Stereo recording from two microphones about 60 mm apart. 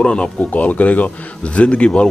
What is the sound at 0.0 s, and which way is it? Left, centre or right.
Speech, centre.